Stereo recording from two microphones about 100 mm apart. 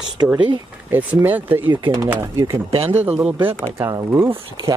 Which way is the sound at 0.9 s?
15° right (ahead or behind).